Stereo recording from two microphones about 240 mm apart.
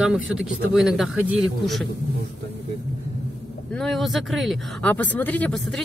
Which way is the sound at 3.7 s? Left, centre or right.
Centre.